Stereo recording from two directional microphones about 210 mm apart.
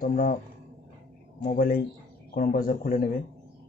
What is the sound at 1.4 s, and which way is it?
Speech, 40° left (ahead or behind).